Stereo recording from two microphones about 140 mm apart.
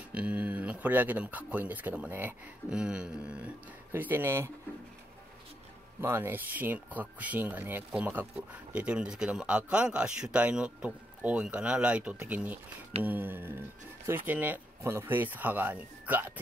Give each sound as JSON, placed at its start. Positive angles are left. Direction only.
{"t": 0.1, "sound": "speech", "side_deg": -10}
{"t": 5.9, "sound": "speech", "side_deg": -15}